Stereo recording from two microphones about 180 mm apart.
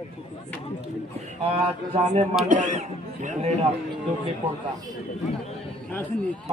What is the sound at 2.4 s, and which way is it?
Speech, 45° right (ahead or behind).